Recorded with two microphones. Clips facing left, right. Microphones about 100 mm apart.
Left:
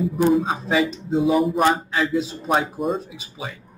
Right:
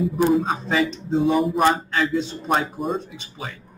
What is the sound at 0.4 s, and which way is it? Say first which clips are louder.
Speech: left 1 dB; centre (ahead or behind).